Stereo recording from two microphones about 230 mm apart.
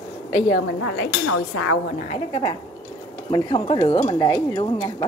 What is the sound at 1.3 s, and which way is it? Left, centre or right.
Chink, left.